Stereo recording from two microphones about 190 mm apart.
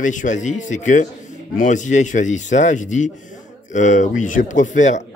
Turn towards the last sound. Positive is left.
turn(degrees=40)  # may be behind; listen again after turning